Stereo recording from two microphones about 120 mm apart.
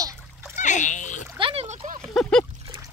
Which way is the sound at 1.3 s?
45° right (ahead or behind).